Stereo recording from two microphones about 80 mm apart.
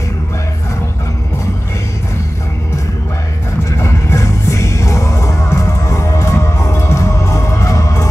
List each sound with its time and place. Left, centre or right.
3.7 s music: left